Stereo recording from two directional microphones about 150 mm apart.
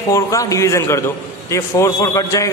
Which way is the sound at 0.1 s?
20° left (ahead or behind).